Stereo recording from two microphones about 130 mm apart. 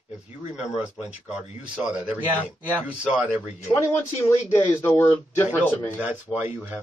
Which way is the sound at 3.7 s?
20° left (ahead or behind).